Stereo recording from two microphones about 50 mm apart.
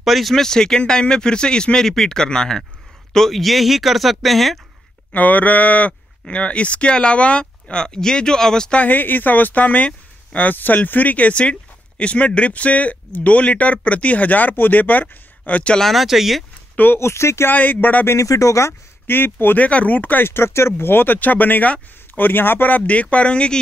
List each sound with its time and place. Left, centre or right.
0.0 s speech: centre
5.1 s speech: left; by 8.7 s centre
8.7 s speech: left
10.5 s speech: left
15.9 s speech: centre
16.7 s speech: left
17.0 s speech: left
17.5 s speech: left
18.0 s speech: left
19.0 s speech: left
19.6 s speech: left
20.2 s speech: left